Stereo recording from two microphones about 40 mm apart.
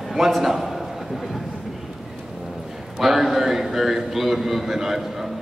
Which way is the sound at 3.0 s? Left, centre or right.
Centre.